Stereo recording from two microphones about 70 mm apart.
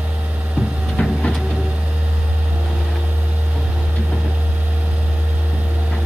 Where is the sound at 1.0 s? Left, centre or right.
Centre.